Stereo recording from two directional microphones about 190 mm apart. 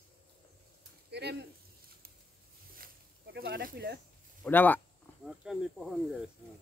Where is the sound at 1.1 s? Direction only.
60° right (ahead or behind).